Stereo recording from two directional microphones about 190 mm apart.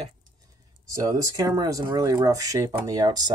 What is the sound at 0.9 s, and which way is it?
Speech, 15° right (ahead or behind).